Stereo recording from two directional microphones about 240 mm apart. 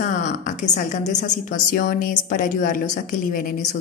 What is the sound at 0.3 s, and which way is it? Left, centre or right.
A woman's voice, left.